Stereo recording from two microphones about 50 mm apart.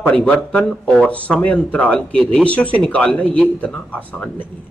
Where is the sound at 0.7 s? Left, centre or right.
Centre.